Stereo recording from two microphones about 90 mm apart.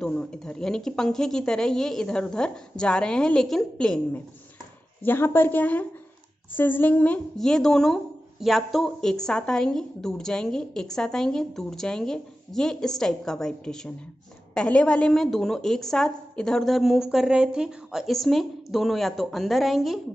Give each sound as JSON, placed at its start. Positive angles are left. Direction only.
{"t": 0.0, "sound": "a woman's voice", "side_deg": 10}
{"t": 5.0, "sound": "a woman's voice", "side_deg": 25}
{"t": 7.3, "sound": "speech", "side_deg": 5}